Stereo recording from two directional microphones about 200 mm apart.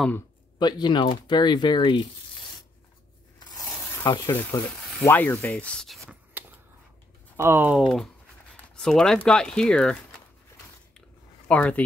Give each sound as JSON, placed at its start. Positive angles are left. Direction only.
{"t": 0.6, "sound": "speech", "side_deg": 20}
{"t": 3.3, "sound": "tearing", "side_deg": 20}
{"t": 5.0, "sound": "speech", "side_deg": 10}
{"t": 11.4, "sound": "speech", "side_deg": 5}